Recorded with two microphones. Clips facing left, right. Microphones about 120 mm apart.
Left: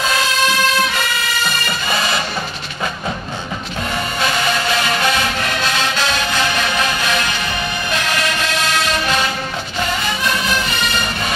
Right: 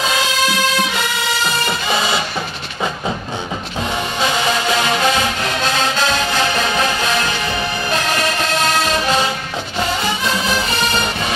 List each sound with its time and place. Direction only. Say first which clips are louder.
0.0 s music: even; 20° right (ahead or behind)
1.7 s music: right 1 dB; 20° right (ahead or behind)
4.2 s music: right 1 dB; 20° right (ahead or behind); by 9.2 s 35° right (ahead or behind)
10.0 s music: right 1 dB; 25° right (ahead or behind)